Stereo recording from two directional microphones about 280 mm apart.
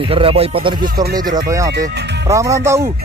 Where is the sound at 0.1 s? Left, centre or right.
Centre.